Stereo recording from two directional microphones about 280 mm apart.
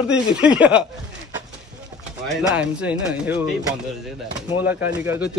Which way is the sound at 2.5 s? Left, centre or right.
Centre.